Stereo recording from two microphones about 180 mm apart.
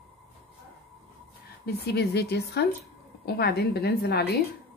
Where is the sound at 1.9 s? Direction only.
65° left (ahead or behind).